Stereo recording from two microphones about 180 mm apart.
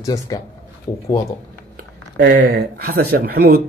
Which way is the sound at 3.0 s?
55° right (ahead or behind).